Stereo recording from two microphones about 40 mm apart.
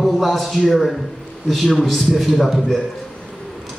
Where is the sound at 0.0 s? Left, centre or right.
Centre.